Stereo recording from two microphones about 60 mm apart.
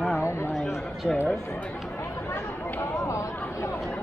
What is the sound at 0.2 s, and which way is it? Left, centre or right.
Chatter, left.